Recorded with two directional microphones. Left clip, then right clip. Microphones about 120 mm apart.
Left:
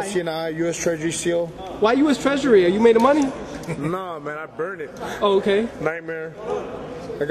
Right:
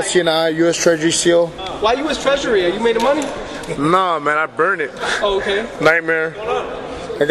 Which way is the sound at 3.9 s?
35° right (ahead or behind).